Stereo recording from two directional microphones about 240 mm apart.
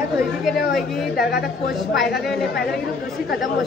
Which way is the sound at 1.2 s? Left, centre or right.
Left.